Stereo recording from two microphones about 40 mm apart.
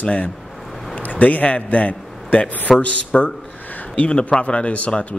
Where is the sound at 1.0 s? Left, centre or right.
Left.